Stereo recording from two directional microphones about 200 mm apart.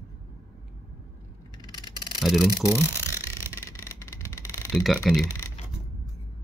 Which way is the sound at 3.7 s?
15° left (ahead or behind).